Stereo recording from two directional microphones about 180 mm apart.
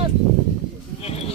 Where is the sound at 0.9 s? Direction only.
35° left (ahead or behind).